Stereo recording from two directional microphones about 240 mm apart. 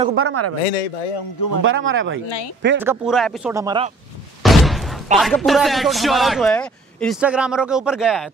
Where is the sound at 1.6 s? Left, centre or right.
Right.